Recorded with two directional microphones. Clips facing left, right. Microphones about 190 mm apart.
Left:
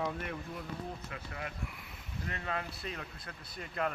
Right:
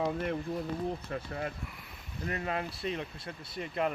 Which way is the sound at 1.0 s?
35° right (ahead or behind).